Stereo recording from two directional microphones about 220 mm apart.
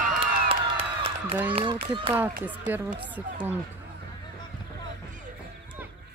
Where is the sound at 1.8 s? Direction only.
25° right (ahead or behind).